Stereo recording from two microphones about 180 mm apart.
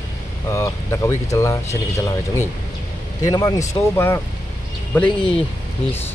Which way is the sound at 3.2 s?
20° left (ahead or behind).